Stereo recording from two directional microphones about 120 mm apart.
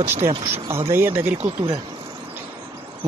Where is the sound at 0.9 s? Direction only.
15° right (ahead or behind).